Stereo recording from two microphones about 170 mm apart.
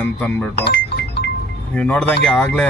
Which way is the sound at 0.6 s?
75° left (ahead or behind).